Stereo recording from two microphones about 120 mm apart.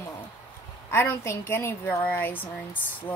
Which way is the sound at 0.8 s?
20° left (ahead or behind).